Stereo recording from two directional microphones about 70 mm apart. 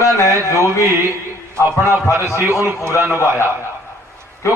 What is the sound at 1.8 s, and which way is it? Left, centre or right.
Speech, left.